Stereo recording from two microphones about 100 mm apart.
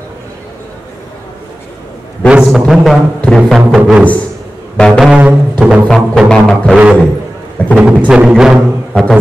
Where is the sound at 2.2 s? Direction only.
5° right (ahead or behind).